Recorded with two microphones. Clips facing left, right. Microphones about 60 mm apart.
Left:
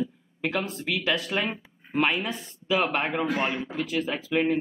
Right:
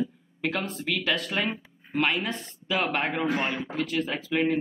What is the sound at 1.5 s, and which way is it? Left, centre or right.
Speech, centre.